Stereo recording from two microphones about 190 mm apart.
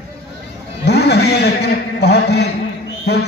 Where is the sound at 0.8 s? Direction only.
60° left (ahead or behind).